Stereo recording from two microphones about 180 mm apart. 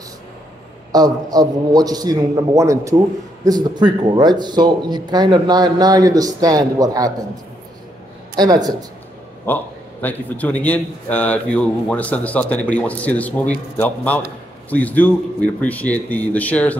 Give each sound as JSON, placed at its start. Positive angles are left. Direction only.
{"t": 0.9, "sound": "speech", "side_deg": -20}
{"t": 8.4, "sound": "speech", "side_deg": -20}
{"t": 9.5, "sound": "a man's voice", "side_deg": 10}